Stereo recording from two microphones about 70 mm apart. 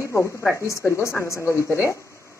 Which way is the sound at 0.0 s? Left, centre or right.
Left.